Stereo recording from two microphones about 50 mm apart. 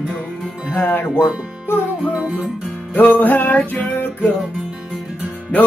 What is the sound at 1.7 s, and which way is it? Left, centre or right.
Music, left.